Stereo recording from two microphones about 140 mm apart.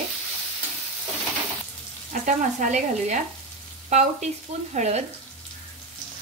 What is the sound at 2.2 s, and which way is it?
Speech, 65° right (ahead or behind).